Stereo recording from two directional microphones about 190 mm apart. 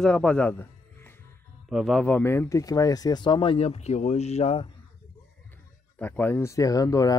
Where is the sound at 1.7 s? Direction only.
Centre (ahead or behind); by 4.7 s 30° left (ahead or behind).